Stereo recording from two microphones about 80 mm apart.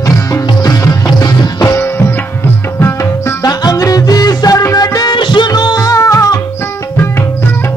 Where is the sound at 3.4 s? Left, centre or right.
Left.